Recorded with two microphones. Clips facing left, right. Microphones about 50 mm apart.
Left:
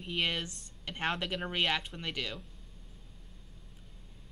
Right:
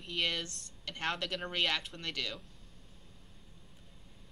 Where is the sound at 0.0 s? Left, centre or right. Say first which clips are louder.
Left 2 dB; centre.